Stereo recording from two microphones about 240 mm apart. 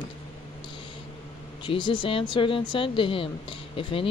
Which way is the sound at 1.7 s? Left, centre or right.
Left.